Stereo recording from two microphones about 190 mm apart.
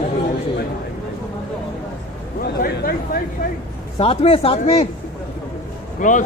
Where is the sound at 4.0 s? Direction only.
30° left (ahead or behind).